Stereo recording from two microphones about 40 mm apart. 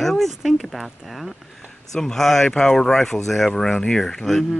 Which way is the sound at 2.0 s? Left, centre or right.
Centre.